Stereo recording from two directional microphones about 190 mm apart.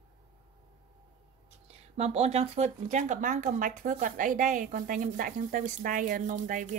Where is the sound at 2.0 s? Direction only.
35° right (ahead or behind).